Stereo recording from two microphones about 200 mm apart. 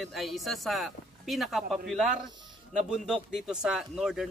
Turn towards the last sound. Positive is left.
turn(degrees=-5)  # may be behind; listen again after turning